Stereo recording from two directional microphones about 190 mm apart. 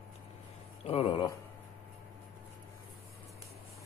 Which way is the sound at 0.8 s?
30° left (ahead or behind).